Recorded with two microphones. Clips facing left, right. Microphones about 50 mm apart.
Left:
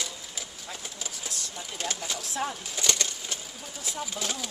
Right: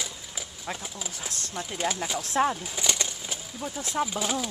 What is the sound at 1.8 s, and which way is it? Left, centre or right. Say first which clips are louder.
Speech: right 5 dB; centre.